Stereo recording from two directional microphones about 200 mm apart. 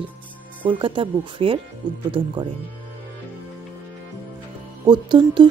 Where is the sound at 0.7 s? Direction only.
25° right (ahead or behind).